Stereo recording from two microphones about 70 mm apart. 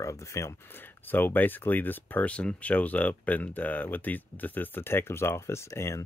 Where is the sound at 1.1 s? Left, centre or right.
Left.